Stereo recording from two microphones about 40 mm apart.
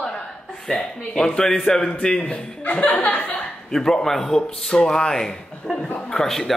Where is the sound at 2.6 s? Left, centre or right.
Left.